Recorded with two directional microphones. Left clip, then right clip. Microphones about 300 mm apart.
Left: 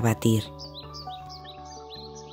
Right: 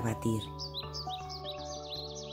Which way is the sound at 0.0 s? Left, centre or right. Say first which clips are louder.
Left 9 dB; left.